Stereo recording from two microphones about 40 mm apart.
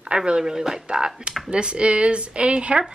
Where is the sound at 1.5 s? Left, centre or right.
Right.